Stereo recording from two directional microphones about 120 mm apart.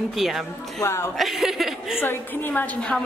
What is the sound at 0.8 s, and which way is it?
Speech, 20° left (ahead or behind).